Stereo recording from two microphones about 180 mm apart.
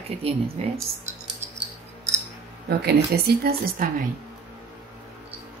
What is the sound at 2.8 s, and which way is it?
A woman's voice, 60° right (ahead or behind).